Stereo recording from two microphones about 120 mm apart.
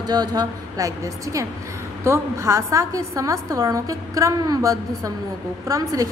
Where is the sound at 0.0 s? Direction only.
35° right (ahead or behind).